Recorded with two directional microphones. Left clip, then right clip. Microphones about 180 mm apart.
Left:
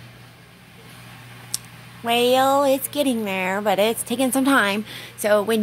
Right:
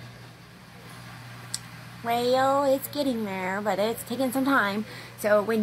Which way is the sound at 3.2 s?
40° left (ahead or behind).